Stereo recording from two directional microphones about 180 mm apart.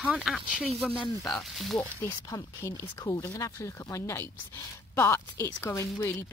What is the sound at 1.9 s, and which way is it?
Speech, 15° left (ahead or behind).